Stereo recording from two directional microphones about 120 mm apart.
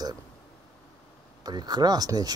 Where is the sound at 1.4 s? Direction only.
35° right (ahead or behind).